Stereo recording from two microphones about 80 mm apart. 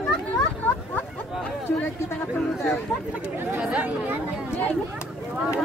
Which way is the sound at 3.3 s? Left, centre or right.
Right.